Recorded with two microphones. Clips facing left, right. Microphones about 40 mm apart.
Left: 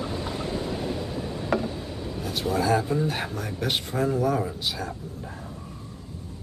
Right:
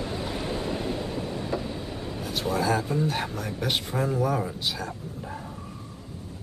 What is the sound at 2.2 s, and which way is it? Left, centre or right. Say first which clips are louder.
Speech: left 1 dB; centre.